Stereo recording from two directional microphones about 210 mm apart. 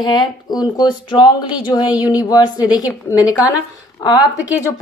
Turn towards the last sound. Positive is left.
turn(degrees=15)  # may be behind; listen again after turning